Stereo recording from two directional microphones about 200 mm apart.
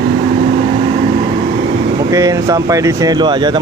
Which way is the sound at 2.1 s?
15° right (ahead or behind).